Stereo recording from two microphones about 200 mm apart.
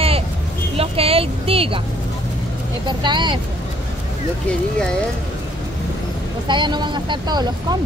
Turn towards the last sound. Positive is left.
turn(degrees=-20)  # may be behind; listen again after turning